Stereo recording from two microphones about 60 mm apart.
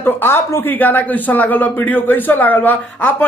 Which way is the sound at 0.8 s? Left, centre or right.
Left.